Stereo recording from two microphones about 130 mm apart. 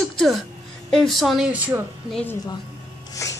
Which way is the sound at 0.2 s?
Centre (ahead or behind).